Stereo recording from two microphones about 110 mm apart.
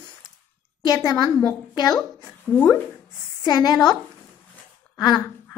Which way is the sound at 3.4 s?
35° left (ahead or behind).